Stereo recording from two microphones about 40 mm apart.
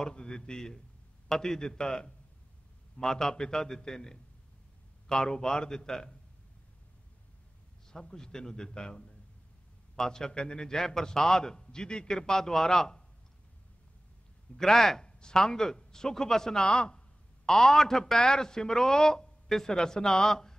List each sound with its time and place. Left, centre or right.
0.0 s a man's voice: left
7.9 s a man's voice: centre
14.6 s a man's voice: centre
15.0 s a man's voice: left
16.6 s a man's voice: left